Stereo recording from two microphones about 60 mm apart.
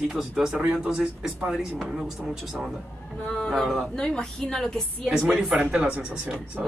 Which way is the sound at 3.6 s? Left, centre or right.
Centre.